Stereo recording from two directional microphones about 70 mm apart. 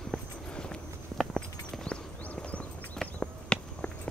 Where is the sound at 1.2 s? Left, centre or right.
Centre.